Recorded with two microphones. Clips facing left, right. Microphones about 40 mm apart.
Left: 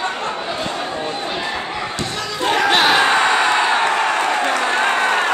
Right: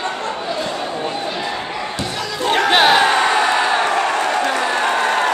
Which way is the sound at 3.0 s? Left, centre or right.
Centre.